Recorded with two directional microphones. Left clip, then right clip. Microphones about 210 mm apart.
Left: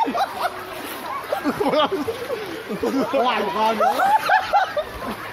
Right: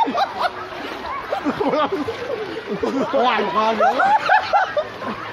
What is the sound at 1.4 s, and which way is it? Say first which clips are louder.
Speech: even; 45° left (ahead or behind).